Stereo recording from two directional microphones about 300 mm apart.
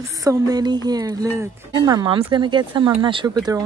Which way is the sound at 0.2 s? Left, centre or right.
Centre.